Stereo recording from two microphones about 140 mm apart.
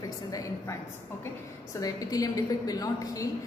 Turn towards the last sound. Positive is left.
turn(degrees=25)  # may be behind; listen again after turning